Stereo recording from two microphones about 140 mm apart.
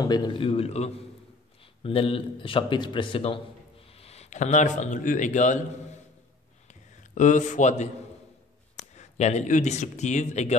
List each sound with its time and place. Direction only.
0.0 s speech: 30° left (ahead or behind); by 5.9 s 60° left (ahead or behind)
6.7 s a sound: 60° left (ahead or behind)
8.7 s speech: 55° left (ahead or behind)